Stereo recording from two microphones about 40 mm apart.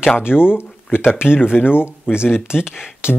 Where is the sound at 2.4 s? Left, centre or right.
Centre.